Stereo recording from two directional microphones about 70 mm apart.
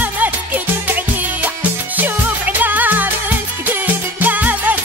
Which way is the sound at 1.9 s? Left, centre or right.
Right.